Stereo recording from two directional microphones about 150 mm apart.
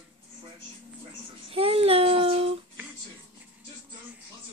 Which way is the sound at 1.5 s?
40° right (ahead or behind).